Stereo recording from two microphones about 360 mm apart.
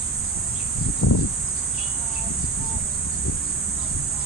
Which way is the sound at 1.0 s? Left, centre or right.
Left.